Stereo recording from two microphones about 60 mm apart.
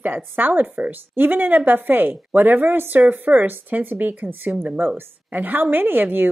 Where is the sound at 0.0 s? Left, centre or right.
Right.